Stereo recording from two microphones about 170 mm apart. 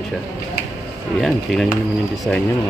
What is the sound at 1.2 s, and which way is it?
Speech, centre (ahead or behind).